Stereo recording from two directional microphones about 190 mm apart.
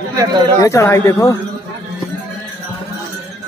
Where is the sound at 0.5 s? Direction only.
15° left (ahead or behind).